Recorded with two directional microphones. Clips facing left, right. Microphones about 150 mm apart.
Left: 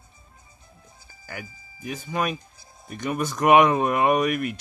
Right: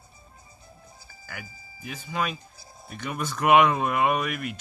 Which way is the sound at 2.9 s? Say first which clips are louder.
Left 5 dB; 45° left (ahead or behind).